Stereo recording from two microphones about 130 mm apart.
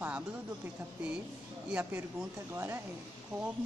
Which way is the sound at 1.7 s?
10° right (ahead or behind).